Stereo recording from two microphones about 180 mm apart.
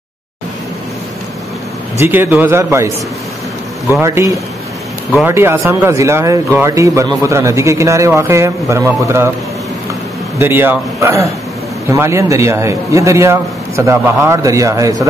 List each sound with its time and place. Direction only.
2.0 s speech: 10° right (ahead or behind)
3.9 s speech: 15° right (ahead or behind)
10.4 s speech: 10° right (ahead or behind)